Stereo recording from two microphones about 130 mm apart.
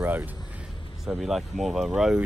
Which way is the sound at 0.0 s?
15° right (ahead or behind).